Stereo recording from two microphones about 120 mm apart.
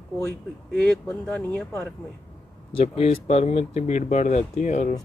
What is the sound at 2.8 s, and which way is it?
Speech, 60° left (ahead or behind).